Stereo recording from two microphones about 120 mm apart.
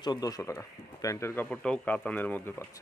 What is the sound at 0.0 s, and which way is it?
Speech, 35° left (ahead or behind).